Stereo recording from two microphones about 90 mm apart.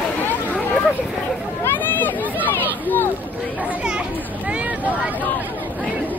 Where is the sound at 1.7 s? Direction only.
20° left (ahead or behind).